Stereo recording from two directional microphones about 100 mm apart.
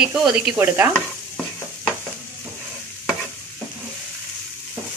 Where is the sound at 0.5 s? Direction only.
20° right (ahead or behind).